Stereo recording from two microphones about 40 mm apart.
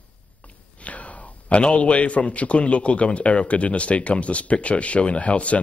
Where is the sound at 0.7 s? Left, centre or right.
Left.